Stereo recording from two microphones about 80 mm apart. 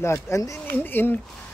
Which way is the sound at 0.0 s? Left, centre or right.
Left.